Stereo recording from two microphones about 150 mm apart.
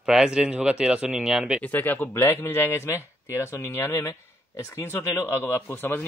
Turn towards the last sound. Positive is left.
turn(degrees=15)  # may be behind; listen again after turning